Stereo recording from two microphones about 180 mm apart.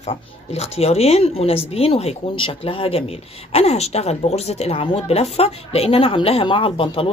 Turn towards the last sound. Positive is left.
turn(degrees=30)  # may be behind; listen again after turning